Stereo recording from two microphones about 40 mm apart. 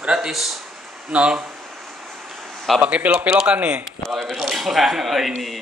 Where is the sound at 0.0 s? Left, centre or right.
Right.